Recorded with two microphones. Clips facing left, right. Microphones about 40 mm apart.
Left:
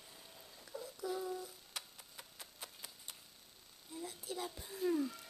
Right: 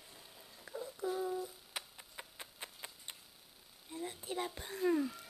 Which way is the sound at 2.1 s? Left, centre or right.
Right.